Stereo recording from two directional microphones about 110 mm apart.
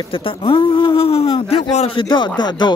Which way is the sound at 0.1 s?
50° left (ahead or behind).